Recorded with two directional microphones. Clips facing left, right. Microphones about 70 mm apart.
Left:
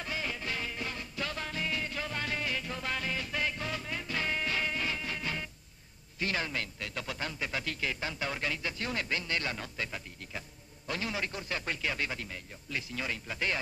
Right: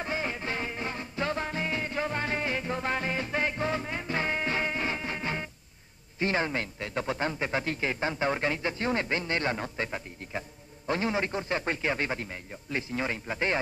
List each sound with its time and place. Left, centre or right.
0.0 s music: right
6.1 s a man's voice: right